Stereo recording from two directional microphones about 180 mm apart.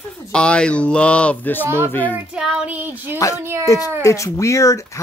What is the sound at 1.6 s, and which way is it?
Speech, 10° right (ahead or behind).